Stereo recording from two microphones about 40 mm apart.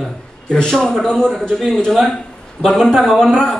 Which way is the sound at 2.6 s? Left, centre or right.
Left.